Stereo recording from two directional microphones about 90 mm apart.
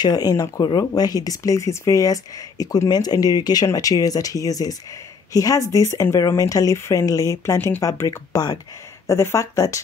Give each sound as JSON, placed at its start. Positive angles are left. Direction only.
{"t": 0.0, "sound": "speech", "side_deg": 45}
{"t": 7.5, "sound": "speech", "side_deg": 20}
{"t": 7.8, "sound": "speech", "side_deg": 35}